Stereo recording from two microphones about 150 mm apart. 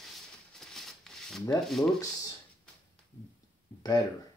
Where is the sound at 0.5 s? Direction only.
5° left (ahead or behind).